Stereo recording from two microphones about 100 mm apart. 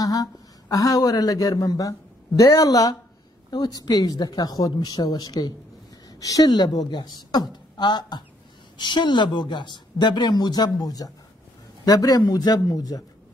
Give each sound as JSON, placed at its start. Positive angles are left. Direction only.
{"t": 0.0, "sound": "speech", "side_deg": 35}